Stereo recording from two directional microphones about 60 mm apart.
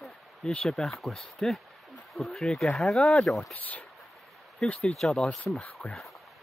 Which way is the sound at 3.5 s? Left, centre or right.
Left.